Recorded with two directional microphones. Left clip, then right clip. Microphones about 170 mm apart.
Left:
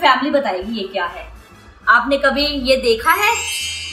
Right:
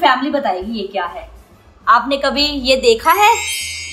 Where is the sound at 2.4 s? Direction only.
60° right (ahead or behind).